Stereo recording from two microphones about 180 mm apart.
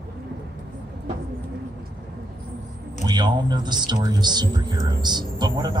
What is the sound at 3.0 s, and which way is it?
Speech, 25° right (ahead or behind).